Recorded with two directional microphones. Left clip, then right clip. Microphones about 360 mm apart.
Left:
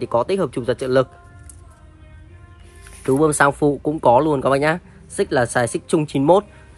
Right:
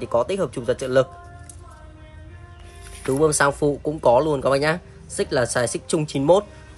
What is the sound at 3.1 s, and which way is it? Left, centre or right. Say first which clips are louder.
Speech: left 3 dB; centre.